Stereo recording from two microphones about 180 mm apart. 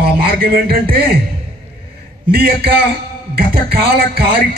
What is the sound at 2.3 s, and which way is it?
A man's voice, 60° right (ahead or behind).